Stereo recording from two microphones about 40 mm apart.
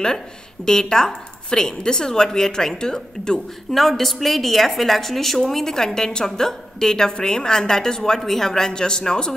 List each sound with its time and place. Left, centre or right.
0.7 s a woman's voice: centre
3.7 s a woman's voice: centre